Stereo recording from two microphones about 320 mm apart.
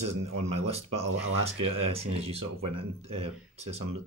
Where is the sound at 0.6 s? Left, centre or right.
Right.